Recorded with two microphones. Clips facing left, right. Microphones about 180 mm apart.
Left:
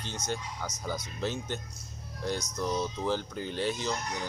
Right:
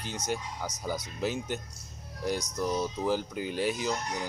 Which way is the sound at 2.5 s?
10° right (ahead or behind).